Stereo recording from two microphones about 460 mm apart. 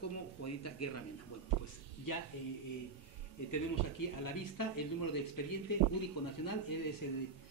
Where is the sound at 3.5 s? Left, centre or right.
Left.